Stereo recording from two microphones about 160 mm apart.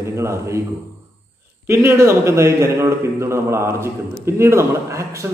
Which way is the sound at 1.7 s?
15° right (ahead or behind).